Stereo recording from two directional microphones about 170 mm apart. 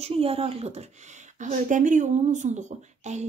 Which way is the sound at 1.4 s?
50° right (ahead or behind).